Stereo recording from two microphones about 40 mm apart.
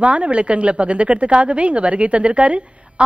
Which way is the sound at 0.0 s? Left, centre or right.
Right.